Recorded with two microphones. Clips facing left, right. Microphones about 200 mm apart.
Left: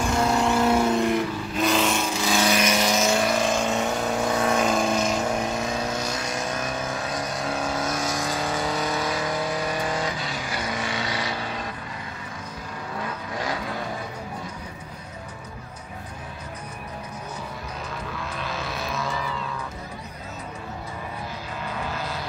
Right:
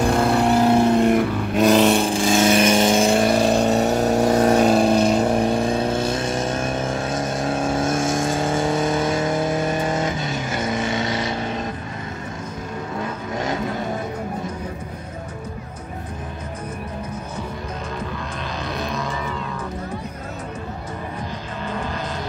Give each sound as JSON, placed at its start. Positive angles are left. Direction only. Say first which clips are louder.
{"t": 0.0, "sound": "vehicle", "louder": "right 5 dB", "side_deg": -55}
{"t": 0.5, "sound": "vehicle", "louder": "right 6 dB", "side_deg": -35}
{"t": 1.0, "sound": "vehicle", "louder": "right 6 dB", "side_deg": -60}
{"t": 1.9, "sound": "vehicle", "louder": "right 7 dB", "side_deg": -30}
{"t": 13.3, "sound": "vehicle", "louder": "right 5 dB", "side_deg": -25}
{"t": 18.7, "sound": "music", "louder": "right 6 dB", "side_deg": 0}